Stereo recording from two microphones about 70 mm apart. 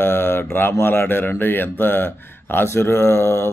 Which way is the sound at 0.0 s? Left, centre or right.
Left.